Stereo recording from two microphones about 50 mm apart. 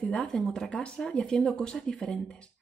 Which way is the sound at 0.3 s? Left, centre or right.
Centre.